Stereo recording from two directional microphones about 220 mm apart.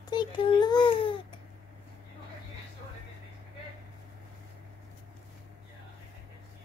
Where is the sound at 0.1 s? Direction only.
20° left (ahead or behind).